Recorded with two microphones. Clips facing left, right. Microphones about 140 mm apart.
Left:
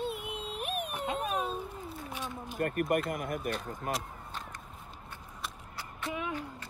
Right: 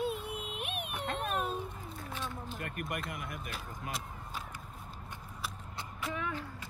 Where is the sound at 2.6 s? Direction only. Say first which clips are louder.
Left 12 dB; 45° left (ahead or behind).